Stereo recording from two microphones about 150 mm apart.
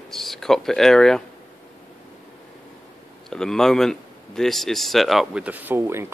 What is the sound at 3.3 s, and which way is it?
Speech, 5° left (ahead or behind).